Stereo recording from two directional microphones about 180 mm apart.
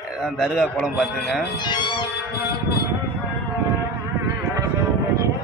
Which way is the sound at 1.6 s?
25° left (ahead or behind).